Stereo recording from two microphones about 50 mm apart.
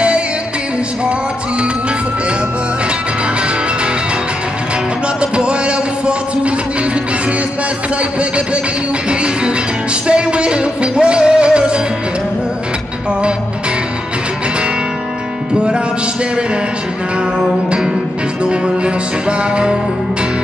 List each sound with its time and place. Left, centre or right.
5.2 s music: right
9.1 s music: right
17.6 s music: centre
19.2 s music: centre